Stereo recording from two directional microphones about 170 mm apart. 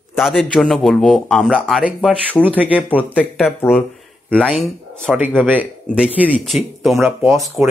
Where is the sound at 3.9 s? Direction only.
Centre (ahead or behind).